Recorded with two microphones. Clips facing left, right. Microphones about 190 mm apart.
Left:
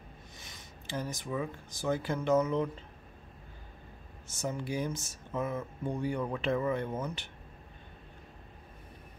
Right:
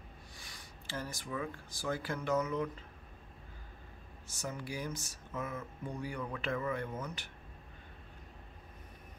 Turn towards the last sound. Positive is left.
turn(degrees=25)  # may be behind; listen again after turning